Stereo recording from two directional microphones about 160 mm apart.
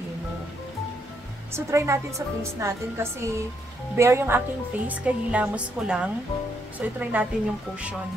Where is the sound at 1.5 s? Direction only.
20° right (ahead or behind).